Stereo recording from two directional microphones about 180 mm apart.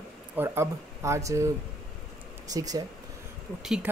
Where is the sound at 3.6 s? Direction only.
5° right (ahead or behind).